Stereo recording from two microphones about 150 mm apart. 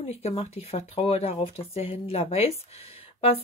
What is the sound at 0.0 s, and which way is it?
Speech, 45° left (ahead or behind).